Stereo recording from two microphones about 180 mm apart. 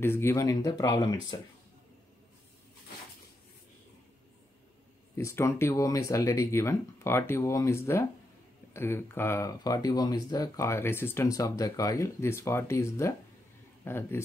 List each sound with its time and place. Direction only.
0.0 s speech: 10° left (ahead or behind)
5.1 s speech: 15° left (ahead or behind)